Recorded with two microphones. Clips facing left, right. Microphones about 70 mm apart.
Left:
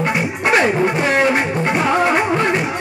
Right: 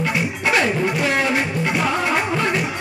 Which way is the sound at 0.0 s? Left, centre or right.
Left.